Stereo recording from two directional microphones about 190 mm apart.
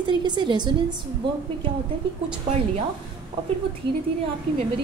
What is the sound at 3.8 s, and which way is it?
Speech, 65° right (ahead or behind).